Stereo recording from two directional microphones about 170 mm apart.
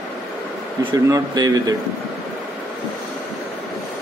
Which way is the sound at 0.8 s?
20° right (ahead or behind).